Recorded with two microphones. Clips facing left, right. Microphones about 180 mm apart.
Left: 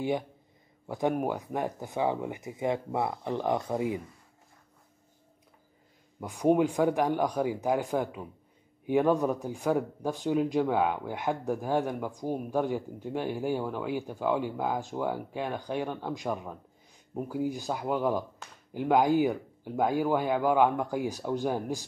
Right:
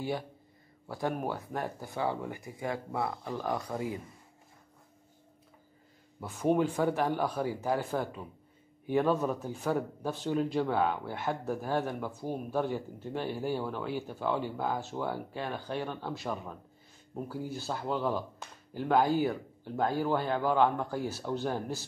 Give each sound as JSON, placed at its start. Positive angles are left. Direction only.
{"t": 0.8, "sound": "speech", "side_deg": 20}
{"t": 6.1, "sound": "speech", "side_deg": 15}